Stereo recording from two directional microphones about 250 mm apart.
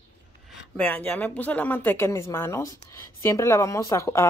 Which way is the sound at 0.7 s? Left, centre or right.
Centre.